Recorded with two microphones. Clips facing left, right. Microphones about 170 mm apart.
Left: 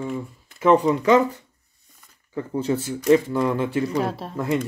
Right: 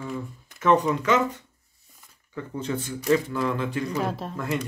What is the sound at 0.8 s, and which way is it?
Speech, 35° left (ahead or behind).